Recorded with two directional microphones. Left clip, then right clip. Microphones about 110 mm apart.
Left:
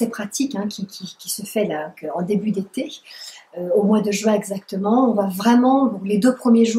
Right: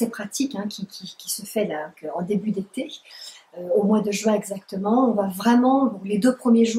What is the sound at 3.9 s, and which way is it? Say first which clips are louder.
Speech: left 3 dB; 5° left (ahead or behind).